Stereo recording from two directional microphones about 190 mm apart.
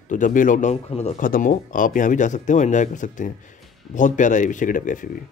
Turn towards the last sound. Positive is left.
turn(degrees=45)  # may be behind; listen again after turning